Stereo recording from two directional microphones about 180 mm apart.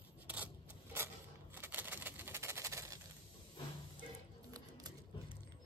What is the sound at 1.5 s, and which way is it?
Typewriter, 10° right (ahead or behind).